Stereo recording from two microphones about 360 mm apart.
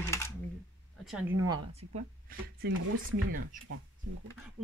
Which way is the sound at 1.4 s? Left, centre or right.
Centre.